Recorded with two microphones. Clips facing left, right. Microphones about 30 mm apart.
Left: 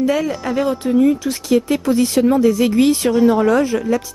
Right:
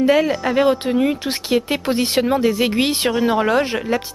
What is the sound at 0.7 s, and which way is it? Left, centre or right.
Speech, right.